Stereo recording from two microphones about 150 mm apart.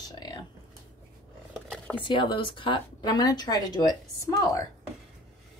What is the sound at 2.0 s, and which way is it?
A woman's voice, 35° left (ahead or behind).